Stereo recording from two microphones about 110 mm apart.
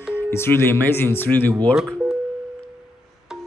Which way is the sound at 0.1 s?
20° left (ahead or behind).